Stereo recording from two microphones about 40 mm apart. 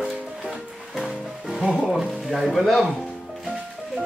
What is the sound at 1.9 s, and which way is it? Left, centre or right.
Speech, centre.